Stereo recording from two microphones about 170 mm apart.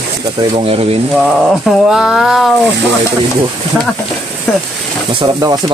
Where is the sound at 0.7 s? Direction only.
35° right (ahead or behind).